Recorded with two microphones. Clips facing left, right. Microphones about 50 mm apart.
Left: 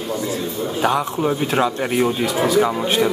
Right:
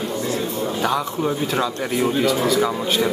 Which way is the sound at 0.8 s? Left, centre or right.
Centre.